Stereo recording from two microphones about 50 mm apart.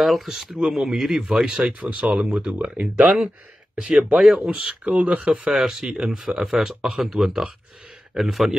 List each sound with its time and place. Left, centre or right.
0.0 s speech: centre
1.9 s speech: right
2.1 s speech: centre
3.7 s speech: centre
4.5 s speech: right
5.5 s speech: centre